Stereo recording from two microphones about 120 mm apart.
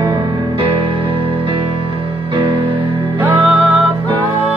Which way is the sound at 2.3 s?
45° right (ahead or behind).